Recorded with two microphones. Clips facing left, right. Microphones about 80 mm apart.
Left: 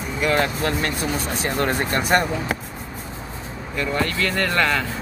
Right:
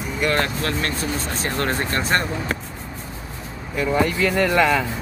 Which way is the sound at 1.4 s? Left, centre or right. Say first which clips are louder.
Left 1 dB; centre.